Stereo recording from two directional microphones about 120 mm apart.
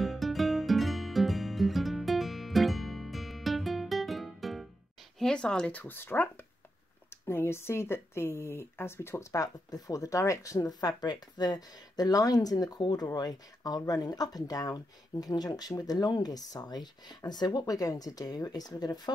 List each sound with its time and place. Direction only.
0.0 s music: centre (ahead or behind)
5.2 s speech: 5° left (ahead or behind); by 19.1 s 35° left (ahead or behind)